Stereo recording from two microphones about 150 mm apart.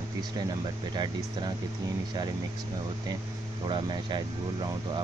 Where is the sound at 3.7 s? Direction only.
30° right (ahead or behind).